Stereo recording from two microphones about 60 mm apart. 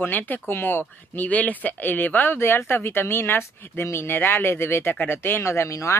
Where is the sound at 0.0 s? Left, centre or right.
Left.